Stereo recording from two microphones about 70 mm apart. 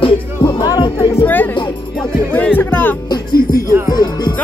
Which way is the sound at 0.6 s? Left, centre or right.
Left.